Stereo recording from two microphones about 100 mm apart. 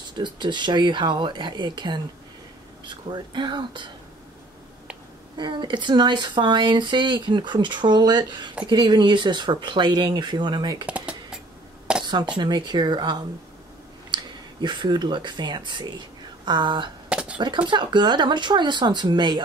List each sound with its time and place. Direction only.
0.2 s speech: 50° right (ahead or behind)
5.4 s speech: 50° right (ahead or behind)
10.9 s computer keyboard: 10° right (ahead or behind)
11.9 s a sound: 10° right (ahead or behind)
12.4 s speech: 50° right (ahead or behind)
17.1 s a sound: 10° right (ahead or behind)
17.4 s speech: 50° right (ahead or behind)